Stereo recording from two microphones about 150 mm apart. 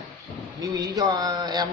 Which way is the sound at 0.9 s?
25° right (ahead or behind).